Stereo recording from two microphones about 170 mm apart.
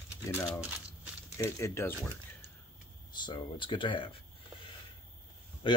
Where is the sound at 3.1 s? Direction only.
25° left (ahead or behind).